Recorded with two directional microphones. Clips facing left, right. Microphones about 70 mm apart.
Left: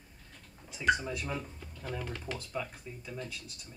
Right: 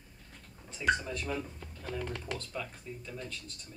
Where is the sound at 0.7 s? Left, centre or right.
Centre.